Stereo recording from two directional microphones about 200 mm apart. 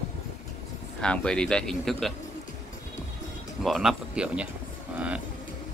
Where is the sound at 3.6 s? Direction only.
Centre (ahead or behind).